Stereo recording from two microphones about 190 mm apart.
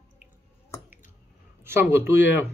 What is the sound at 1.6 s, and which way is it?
Speech, 15° right (ahead or behind).